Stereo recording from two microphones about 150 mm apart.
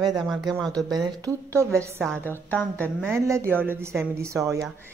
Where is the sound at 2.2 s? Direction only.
10° left (ahead or behind).